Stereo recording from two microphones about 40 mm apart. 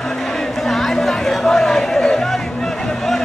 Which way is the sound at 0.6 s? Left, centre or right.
Centre.